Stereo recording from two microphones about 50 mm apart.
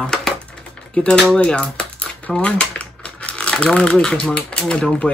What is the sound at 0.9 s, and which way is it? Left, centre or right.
Speech, centre.